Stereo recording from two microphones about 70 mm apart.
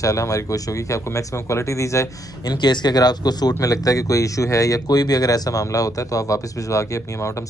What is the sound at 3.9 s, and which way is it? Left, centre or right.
Speech, left.